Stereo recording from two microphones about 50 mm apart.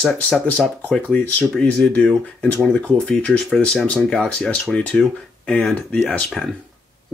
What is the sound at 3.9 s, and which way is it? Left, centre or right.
Speech, centre.